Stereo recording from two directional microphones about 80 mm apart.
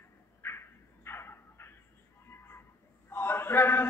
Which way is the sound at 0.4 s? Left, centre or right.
Left.